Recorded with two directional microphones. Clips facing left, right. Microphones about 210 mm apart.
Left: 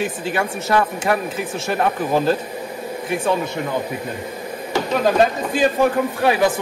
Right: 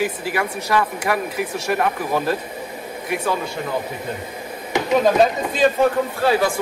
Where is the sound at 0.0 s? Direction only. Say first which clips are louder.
Even; 25° left (ahead or behind).